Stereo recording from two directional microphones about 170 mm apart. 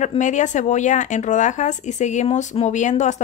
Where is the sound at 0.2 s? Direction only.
45° left (ahead or behind).